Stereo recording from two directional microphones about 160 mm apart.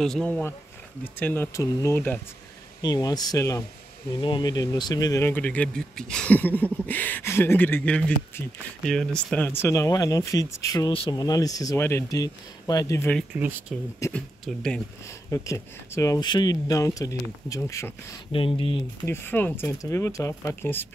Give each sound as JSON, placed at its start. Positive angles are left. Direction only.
{"t": 0.0, "sound": "speech", "side_deg": 5}
{"t": 2.8, "sound": "speech", "side_deg": 25}
{"t": 13.3, "sound": "speech", "side_deg": -10}
{"t": 13.9, "sound": "speech", "side_deg": 15}
{"t": 14.4, "sound": "speech", "side_deg": 5}
{"t": 15.3, "sound": "speech", "side_deg": 20}
{"t": 18.3, "sound": "speech", "side_deg": 35}
{"t": 19.0, "sound": "speech", "side_deg": 15}